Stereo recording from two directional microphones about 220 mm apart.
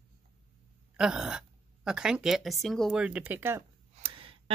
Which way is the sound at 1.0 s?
5° right (ahead or behind).